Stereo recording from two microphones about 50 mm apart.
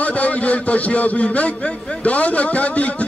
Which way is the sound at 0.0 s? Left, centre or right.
Left.